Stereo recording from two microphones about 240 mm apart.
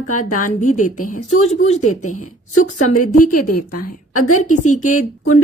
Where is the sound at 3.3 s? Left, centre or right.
Left.